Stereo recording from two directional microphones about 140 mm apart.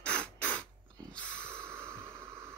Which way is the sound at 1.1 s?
5° left (ahead or behind).